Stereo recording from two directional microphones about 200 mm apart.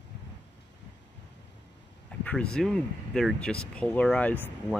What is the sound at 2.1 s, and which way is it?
Speech, 5° left (ahead or behind).